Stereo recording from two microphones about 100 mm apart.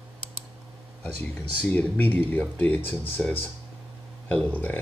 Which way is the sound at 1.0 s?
15° left (ahead or behind).